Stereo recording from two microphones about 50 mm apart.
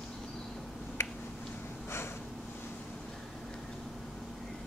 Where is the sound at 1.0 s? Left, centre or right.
Left.